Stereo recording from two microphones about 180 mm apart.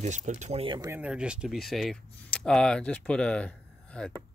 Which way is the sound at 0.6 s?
30° right (ahead or behind).